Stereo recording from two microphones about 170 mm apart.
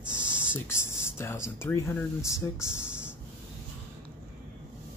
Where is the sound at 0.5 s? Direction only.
15° left (ahead or behind).